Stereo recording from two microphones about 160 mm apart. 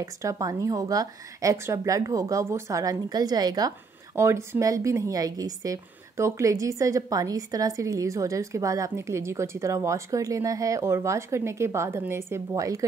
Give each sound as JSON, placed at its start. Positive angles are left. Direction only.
{"t": 0.0, "sound": "speech", "side_deg": -20}